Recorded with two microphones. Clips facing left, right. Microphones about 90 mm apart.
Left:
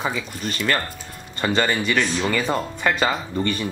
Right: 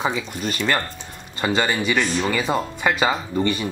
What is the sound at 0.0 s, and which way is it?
Speech, 10° right (ahead or behind).